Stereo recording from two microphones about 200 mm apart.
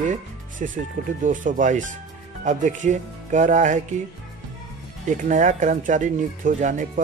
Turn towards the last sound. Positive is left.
turn(degrees=-40)  # may be behind; listen again after turning